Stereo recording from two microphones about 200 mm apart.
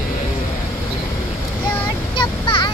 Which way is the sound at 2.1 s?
25° left (ahead or behind).